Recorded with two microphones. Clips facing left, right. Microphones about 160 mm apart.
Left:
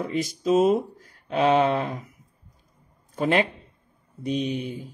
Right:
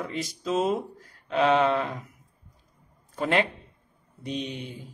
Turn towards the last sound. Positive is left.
turn(degrees=15)  # may be behind; listen again after turning